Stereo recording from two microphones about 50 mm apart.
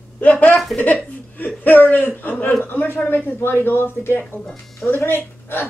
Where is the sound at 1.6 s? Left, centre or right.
Left.